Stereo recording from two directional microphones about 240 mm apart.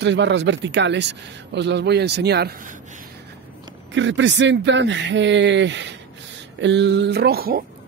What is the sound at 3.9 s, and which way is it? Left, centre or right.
Speech, right.